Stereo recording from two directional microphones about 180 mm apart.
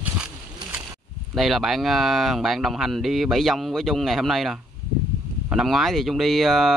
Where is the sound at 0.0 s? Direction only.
10° right (ahead or behind).